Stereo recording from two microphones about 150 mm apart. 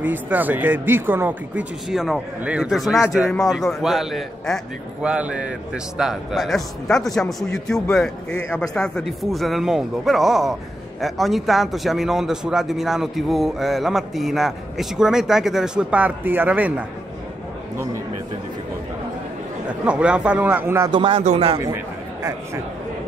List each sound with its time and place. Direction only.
0.0 s a man's voice: 10° right (ahead or behind)
19.8 s speech: 5° right (ahead or behind)
20.9 s speech: 35° right (ahead or behind)
21.2 s speech: 45° right (ahead or behind)
21.5 s a sound: 20° right (ahead or behind)